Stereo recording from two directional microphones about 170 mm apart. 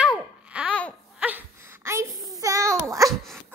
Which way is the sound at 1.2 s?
10° right (ahead or behind).